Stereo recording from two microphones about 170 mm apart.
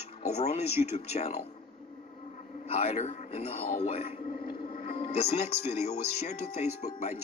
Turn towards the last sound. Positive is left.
turn(degrees=40)  # may be behind; listen again after turning